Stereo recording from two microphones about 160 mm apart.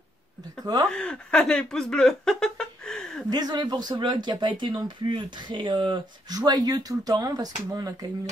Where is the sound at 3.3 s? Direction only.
25° right (ahead or behind).